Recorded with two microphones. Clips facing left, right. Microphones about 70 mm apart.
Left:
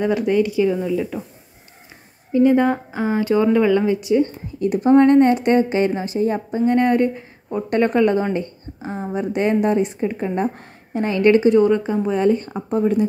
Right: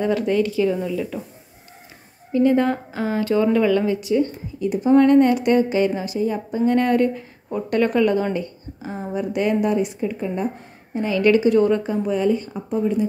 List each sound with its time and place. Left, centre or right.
0.0 s speech: centre
2.3 s speech: centre
4.6 s speech: left
4.9 s a woman's voice: left
6.6 s a woman's voice: left
11.1 s a woman's voice: left
11.6 s speech: left
12.2 s speech: left